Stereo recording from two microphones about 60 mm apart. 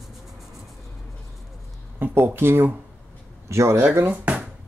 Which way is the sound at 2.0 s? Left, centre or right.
Right.